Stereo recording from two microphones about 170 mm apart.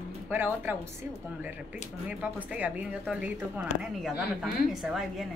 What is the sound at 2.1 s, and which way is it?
Speech, 10° right (ahead or behind).